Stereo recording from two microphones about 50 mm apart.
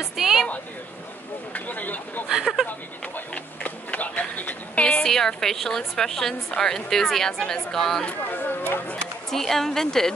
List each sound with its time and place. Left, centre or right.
0.2 s a sound: centre
1.5 s speech: left
3.6 s a sound: left
5.0 s a woman's voice: centre
8.3 s speech: left
9.3 s a woman's voice: centre